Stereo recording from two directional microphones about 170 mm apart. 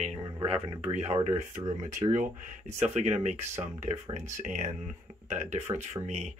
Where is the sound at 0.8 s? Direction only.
40° right (ahead or behind).